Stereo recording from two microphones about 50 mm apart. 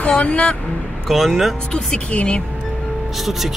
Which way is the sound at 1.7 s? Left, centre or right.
Left.